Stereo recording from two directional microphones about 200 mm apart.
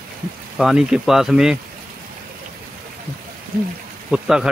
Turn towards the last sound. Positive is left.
turn(degrees=-5)  # may be behind; listen again after turning